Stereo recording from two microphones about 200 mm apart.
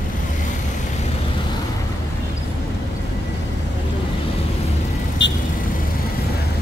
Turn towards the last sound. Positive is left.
turn(degrees=60)  # may be behind; listen again after turning